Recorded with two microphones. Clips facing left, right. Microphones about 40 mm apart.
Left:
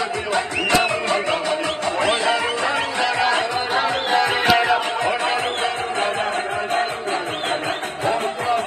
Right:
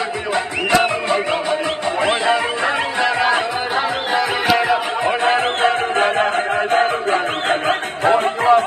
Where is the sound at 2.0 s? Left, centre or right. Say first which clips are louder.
Right 3 dB; right.